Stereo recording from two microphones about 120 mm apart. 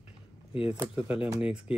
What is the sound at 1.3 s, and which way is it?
Speech, 10° right (ahead or behind).